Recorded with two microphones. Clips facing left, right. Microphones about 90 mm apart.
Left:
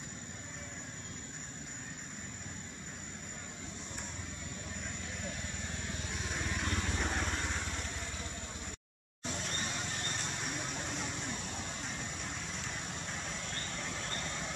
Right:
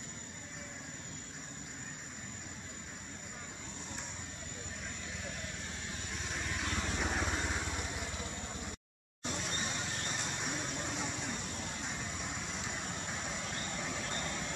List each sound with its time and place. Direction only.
6.1 s vehicle: centre (ahead or behind)
9.2 s vehicle: 5° right (ahead or behind)